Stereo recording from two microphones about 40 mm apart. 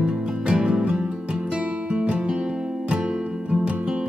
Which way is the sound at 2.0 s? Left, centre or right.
Right.